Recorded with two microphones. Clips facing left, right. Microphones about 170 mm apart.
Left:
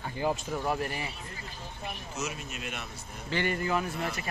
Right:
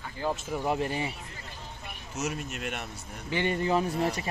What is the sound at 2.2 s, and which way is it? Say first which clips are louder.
Speech: right 5 dB; 65° right (ahead or behind).